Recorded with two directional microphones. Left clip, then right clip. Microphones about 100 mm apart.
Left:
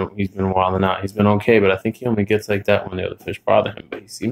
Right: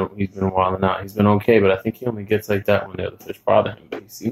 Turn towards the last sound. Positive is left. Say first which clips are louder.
# left 1 dB
turn(degrees=25)  # may be behind; listen again after turning